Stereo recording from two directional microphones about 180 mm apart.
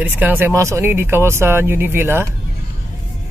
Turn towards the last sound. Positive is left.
turn(degrees=-15)  # may be behind; listen again after turning